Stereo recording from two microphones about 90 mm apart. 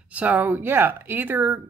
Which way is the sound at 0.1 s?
15° right (ahead or behind).